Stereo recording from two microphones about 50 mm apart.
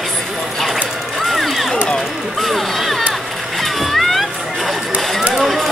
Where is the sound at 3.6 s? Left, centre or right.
Centre.